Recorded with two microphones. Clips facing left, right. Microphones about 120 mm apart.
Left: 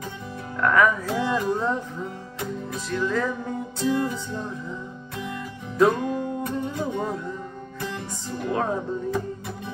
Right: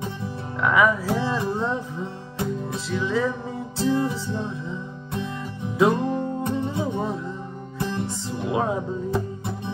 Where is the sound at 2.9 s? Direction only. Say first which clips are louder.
Right 1 dB; 5° right (ahead or behind).